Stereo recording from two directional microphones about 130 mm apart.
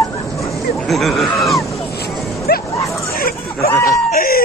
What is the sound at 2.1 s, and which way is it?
Dog, centre (ahead or behind).